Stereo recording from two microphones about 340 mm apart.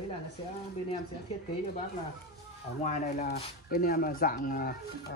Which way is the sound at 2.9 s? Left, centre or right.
Left.